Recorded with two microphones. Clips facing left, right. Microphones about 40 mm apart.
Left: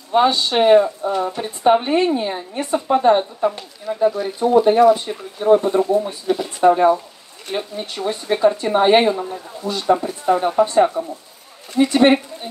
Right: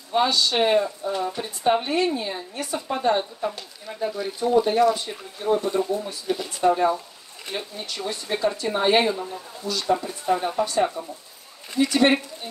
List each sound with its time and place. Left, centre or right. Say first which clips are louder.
0.1 s speech: left 5 dB; left
5.4 s speech: left 8 dB; left
6.2 s speech: left 6 dB; centre
6.6 s speech: left 7 dB; left